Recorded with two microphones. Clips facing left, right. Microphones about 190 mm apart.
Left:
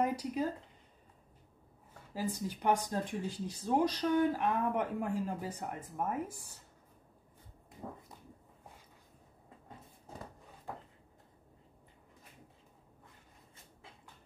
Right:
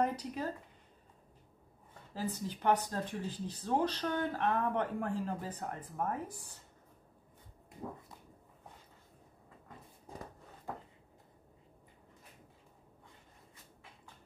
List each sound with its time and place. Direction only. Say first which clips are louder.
0.0 s speech: left 2 dB; 10° left (ahead or behind)
2.1 s speech: left 1 dB; 15° left (ahead or behind)